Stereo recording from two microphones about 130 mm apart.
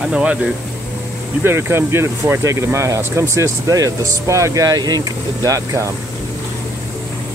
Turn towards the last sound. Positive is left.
turn(degrees=-25)  # may be behind; listen again after turning